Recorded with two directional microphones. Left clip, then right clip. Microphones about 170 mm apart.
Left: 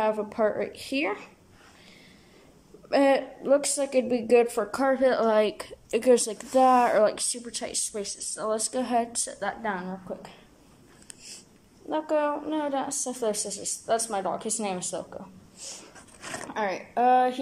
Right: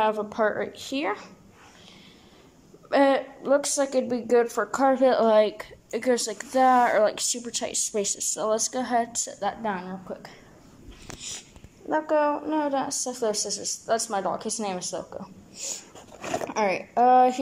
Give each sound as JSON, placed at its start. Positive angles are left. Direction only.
{"t": 0.0, "sound": "a woman's voice", "side_deg": 5}
{"t": 2.9, "sound": "a woman's voice", "side_deg": 5}
{"t": 8.0, "sound": "speech", "side_deg": -20}
{"t": 8.5, "sound": "a woman's voice", "side_deg": 5}
{"t": 11.9, "sound": "a woman's voice", "side_deg": 0}
{"t": 15.6, "sound": "speech", "side_deg": -20}
{"t": 16.2, "sound": "a sound", "side_deg": -30}
{"t": 16.4, "sound": "a woman's voice", "side_deg": -10}